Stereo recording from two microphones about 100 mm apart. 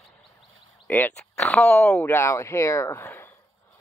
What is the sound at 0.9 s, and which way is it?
Speech, 20° left (ahead or behind).